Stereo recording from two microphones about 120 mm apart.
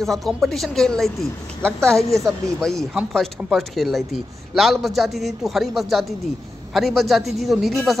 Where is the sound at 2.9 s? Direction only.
5° right (ahead or behind).